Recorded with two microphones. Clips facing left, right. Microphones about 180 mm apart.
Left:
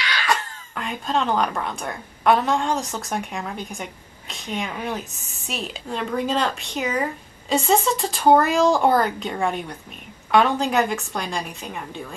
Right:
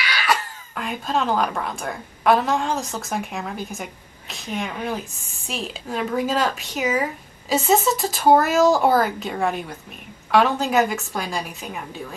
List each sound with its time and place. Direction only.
0.0 s speech: 10° right (ahead or behind)